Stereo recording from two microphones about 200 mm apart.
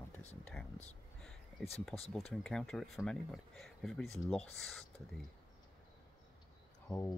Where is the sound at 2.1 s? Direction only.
5° left (ahead or behind).